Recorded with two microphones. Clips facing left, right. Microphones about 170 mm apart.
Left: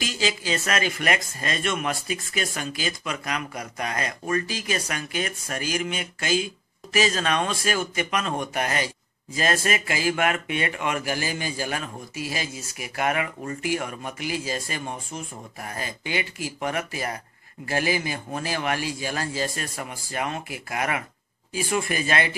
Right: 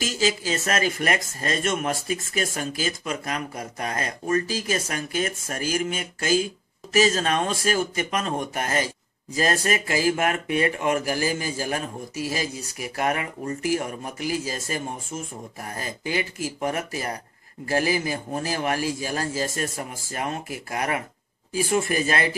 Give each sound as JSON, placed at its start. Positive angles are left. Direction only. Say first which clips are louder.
{"t": 0.0, "sound": "speech", "louder": "right 3 dB", "side_deg": -40}